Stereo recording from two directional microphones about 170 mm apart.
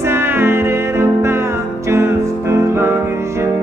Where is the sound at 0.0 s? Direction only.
15° right (ahead or behind).